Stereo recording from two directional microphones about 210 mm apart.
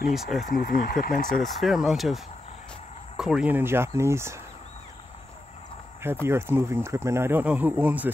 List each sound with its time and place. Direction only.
0.1 s speech: centre (ahead or behind)
0.5 s speech: 45° left (ahead or behind)
1.3 s speech: centre (ahead or behind)
6.2 s speech: 10° right (ahead or behind)